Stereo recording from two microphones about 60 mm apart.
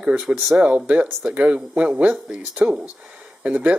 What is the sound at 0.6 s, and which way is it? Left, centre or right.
Speech, right.